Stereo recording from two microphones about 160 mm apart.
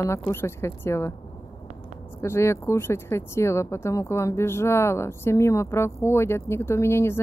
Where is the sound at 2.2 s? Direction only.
15° left (ahead or behind).